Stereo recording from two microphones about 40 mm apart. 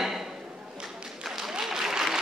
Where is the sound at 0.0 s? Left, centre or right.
Centre.